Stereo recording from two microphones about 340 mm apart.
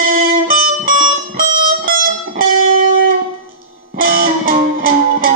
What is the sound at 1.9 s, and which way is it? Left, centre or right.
Music, right.